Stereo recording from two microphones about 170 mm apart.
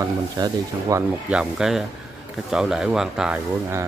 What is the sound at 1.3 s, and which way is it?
Speech, 5° right (ahead or behind).